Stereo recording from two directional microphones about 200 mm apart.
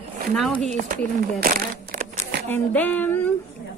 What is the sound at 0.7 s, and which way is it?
Speech, 40° right (ahead or behind).